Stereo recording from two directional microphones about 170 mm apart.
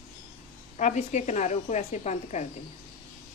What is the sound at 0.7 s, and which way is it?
A woman's voice, 45° left (ahead or behind).